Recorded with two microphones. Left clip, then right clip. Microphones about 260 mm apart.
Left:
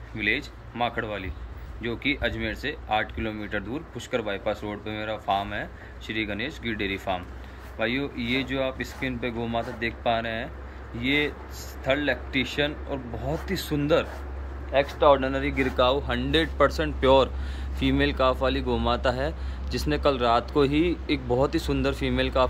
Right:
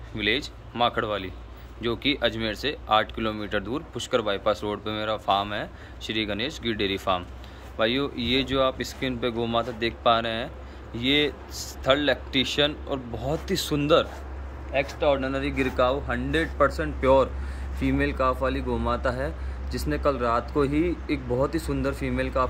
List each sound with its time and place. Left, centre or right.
0.1 s speech: centre
14.7 s a man's voice: left
15.1 s speech: centre
15.8 s speech: centre
17.0 s speech: centre
20.7 s speech: right
21.3 s speech: centre